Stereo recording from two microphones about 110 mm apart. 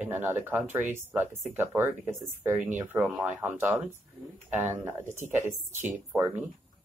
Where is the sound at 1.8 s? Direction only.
20° right (ahead or behind).